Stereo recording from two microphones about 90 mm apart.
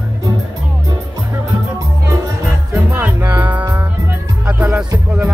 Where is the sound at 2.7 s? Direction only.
20° right (ahead or behind).